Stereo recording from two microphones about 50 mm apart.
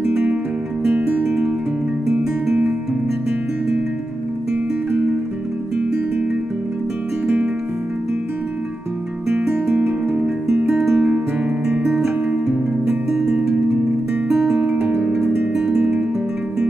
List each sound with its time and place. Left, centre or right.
0.1 s music: right
1.0 s music: centre
9.7 s music: right
10.7 s music: centre
11.0 s music: right
11.9 s music: centre; by 15.1 s right